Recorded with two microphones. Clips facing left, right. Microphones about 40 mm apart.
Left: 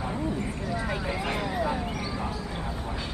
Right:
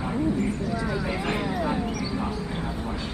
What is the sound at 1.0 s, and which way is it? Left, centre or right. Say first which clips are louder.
Speech: right 2 dB; centre.